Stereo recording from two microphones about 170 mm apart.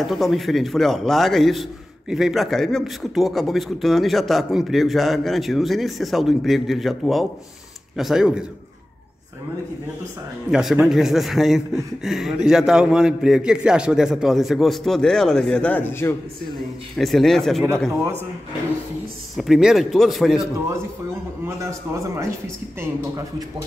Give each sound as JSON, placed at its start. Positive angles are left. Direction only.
{"t": 0.0, "sound": "a man's voice", "side_deg": 0}
{"t": 10.5, "sound": "a man's voice", "side_deg": -5}
{"t": 16.5, "sound": "a man's voice", "side_deg": 0}
{"t": 19.3, "sound": "a man's voice", "side_deg": 0}
{"t": 21.5, "sound": "a man's voice", "side_deg": -15}